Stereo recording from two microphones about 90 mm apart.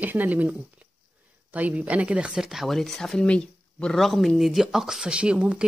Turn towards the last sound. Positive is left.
turn(degrees=-10)  # may be behind; listen again after turning